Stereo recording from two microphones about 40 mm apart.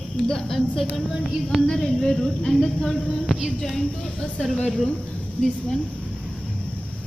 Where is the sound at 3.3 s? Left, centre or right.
Centre.